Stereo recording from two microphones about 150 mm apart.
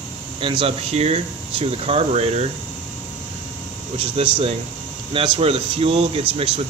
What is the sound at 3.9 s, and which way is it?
Speech, 35° right (ahead or behind).